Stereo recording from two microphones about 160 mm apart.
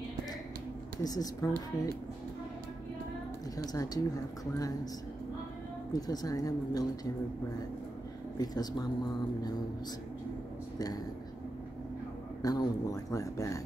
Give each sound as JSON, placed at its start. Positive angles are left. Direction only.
{"t": 1.0, "sound": "speech", "side_deg": 25}
{"t": 3.5, "sound": "speech", "side_deg": 20}
{"t": 5.9, "sound": "speech", "side_deg": 25}
{"t": 8.4, "sound": "speech", "side_deg": 25}
{"t": 12.4, "sound": "speech", "side_deg": 25}